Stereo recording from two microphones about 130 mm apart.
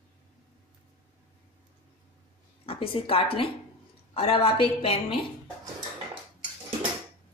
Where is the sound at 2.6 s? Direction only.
45° left (ahead or behind).